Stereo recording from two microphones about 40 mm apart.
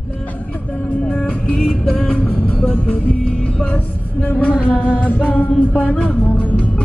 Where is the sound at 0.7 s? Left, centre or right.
Left.